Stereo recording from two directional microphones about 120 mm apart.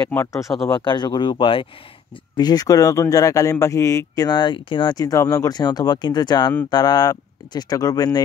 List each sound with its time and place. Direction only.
0.1 s speech: 20° left (ahead or behind)
0.4 s speech: centre (ahead or behind)
0.7 s speech: 40° left (ahead or behind)
2.3 s speech: 35° left (ahead or behind)